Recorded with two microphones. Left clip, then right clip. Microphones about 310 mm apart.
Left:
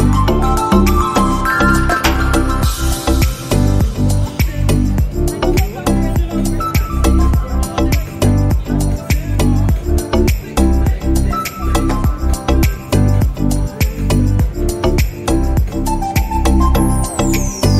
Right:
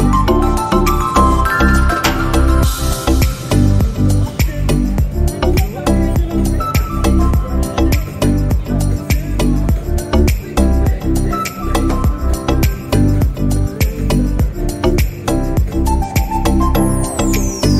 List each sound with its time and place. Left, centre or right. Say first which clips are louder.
0.0 s music: right 2 dB; centre